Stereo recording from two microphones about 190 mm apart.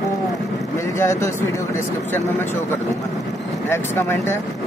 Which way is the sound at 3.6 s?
10° left (ahead or behind).